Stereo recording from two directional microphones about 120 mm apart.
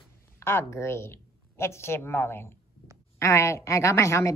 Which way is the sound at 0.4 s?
20° left (ahead or behind).